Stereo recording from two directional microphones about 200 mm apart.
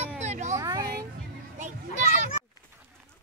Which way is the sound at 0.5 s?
15° right (ahead or behind).